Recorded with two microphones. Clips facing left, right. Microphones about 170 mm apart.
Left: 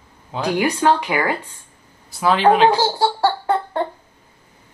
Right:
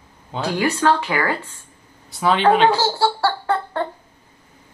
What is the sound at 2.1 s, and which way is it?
Speech, 5° left (ahead or behind).